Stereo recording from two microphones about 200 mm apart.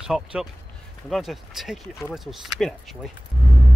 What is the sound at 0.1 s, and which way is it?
Speech, 5° right (ahead or behind).